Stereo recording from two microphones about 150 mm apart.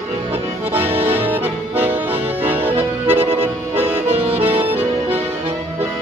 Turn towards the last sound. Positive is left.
turn(degrees=-15)  # may be behind; listen again after turning